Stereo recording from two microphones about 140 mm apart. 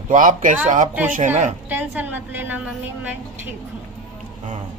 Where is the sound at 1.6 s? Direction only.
10° right (ahead or behind).